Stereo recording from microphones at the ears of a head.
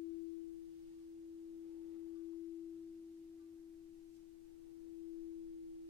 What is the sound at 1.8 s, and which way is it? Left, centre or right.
Tuning fork, left.